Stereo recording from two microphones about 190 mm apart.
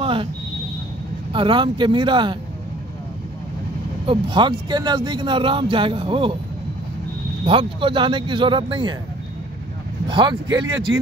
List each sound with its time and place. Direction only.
0.0 s a sound: 25° right (ahead or behind)
1.3 s speech: 25° right (ahead or behind)
4.0 s speech: 25° right (ahead or behind)
7.4 s speech: 25° right (ahead or behind)
10.0 s speech: 25° right (ahead or behind)